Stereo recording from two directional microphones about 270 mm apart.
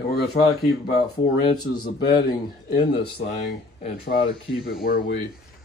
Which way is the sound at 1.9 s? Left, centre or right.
Left.